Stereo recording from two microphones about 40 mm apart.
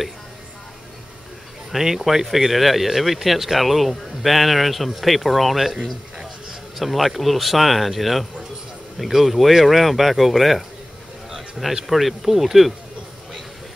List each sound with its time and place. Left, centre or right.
1.7 s speech: centre
6.8 s speech: centre